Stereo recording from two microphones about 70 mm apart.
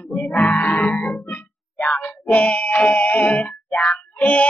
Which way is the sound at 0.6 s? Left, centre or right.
Left.